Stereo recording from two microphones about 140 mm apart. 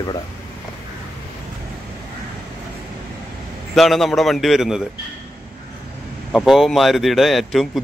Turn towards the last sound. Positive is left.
turn(degrees=0)  # may be behind; listen again after turning